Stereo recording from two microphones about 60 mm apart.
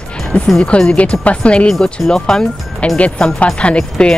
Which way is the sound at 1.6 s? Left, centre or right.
Centre.